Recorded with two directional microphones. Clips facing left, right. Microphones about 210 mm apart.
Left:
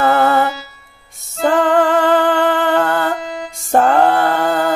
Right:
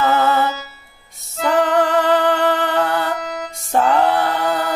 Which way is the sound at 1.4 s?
50° left (ahead or behind).